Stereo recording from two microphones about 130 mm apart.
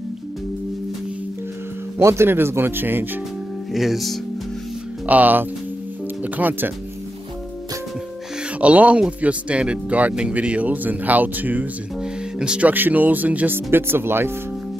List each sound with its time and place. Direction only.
2.0 s speech: 20° right (ahead or behind)
3.7 s speech: centre (ahead or behind)
5.0 s speech: 10° right (ahead or behind)
8.5 s speech: 10° right (ahead or behind)